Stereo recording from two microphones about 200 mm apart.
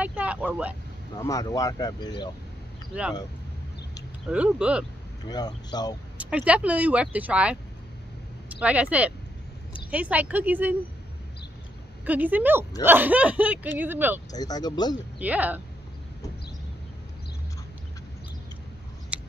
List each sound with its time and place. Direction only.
0.0 s vehicle: 5° right (ahead or behind)
1.2 s speech: 15° left (ahead or behind)
2.9 s speech: 5° right (ahead or behind)
4.3 s speech: 5° right (ahead or behind)
5.2 s speech: 20° left (ahead or behind)
6.1 s speech: 5° right (ahead or behind)
12.0 s speech: 10° right (ahead or behind)
14.3 s speech: 20° left (ahead or behind)
15.1 s speech: 10° right (ahead or behind)
19.1 s scissors: 5° right (ahead or behind)